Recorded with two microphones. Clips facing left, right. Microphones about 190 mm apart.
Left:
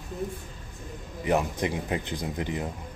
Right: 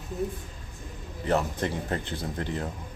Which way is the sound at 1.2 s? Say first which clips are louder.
Left 1 dB; 15° left (ahead or behind).